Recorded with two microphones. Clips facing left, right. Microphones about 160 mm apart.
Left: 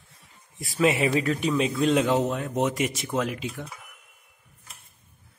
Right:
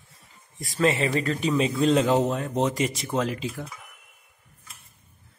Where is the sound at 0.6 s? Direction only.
5° left (ahead or behind).